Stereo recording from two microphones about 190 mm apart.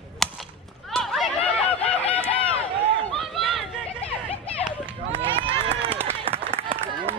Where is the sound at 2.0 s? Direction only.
5° left (ahead or behind).